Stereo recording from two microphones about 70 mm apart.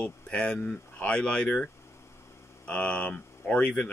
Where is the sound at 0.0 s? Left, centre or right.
Centre.